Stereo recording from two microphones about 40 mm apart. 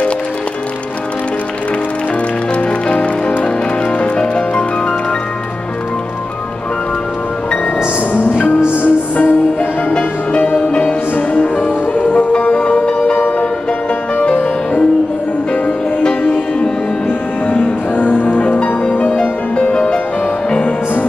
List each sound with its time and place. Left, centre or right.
2.9 s music: left
8.1 s music: left
9.9 s music: left
14.3 s music: left
15.5 s music: left
17.5 s music: left